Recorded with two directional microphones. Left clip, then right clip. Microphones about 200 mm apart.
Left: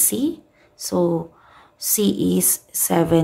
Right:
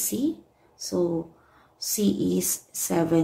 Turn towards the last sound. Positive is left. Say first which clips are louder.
# left 5 dB
turn(degrees=35)  # may be behind; listen again after turning